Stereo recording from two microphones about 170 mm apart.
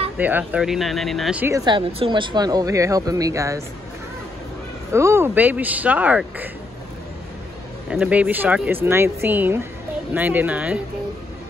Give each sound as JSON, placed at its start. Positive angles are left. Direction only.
{"t": 0.2, "sound": "speech", "side_deg": -10}
{"t": 1.4, "sound": "speech", "side_deg": -20}
{"t": 4.9, "sound": "speech", "side_deg": -15}
{"t": 7.9, "sound": "speech", "side_deg": -5}